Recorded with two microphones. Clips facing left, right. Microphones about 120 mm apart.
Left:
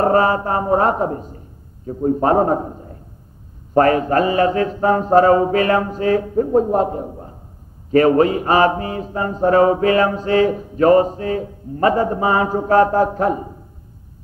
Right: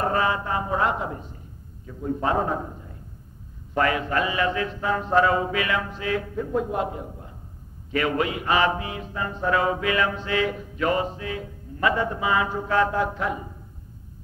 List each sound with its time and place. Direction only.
0.0 s mantra: 40° left (ahead or behind)